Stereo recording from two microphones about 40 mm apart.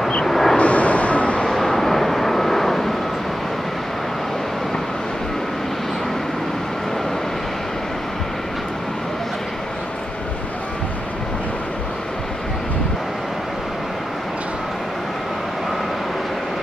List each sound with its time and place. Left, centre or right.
0.2 s vehicle: centre
0.6 s vehicle: left
1.5 s vehicle: centre